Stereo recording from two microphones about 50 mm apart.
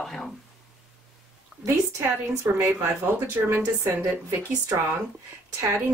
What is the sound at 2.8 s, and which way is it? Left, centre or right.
Speech, right.